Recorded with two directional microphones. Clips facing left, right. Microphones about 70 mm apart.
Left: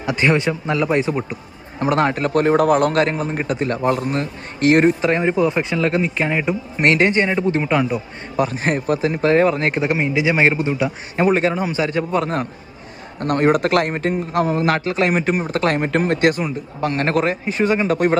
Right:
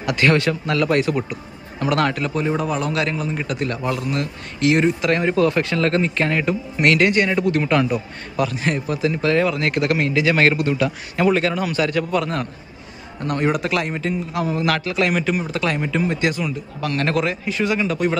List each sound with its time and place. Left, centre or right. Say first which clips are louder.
0.0 s speech: even; left
1.3 s a man's voice: even; left
2.2 s a man's voice: left 7 dB; left
5.0 s speech: left 1 dB; centre
5.8 s speech: even; centre
6.8 s speech: left 1 dB; left
7.6 s speech: even; centre
8.4 s speech: left 2 dB; left; by 10.9 s centre
11.1 s speech: left 2 dB; left
13.2 s a man's voice: left 5 dB; left